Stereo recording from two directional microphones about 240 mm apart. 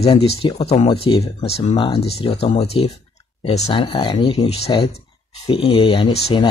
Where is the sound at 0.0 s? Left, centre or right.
Left.